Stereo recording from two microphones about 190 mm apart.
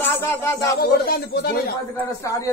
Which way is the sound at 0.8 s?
55° left (ahead or behind).